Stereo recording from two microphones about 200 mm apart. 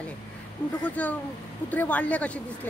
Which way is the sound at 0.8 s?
10° left (ahead or behind).